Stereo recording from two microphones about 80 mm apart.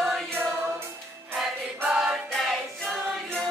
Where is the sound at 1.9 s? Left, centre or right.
Centre.